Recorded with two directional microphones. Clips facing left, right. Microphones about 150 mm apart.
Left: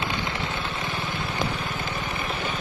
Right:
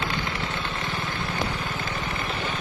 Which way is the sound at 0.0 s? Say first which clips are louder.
Even; 20° left (ahead or behind).